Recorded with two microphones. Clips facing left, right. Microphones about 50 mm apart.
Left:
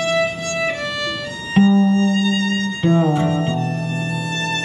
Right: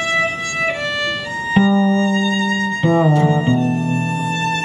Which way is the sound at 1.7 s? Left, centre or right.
Right.